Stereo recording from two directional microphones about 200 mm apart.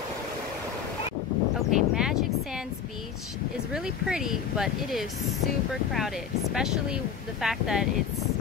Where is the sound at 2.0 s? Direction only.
Centre (ahead or behind).